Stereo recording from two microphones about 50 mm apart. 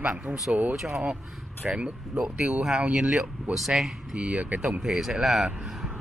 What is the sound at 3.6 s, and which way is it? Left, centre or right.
Speech, centre.